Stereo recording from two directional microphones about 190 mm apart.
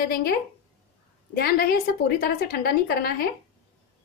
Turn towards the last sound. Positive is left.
turn(degrees=55)  # may be behind; listen again after turning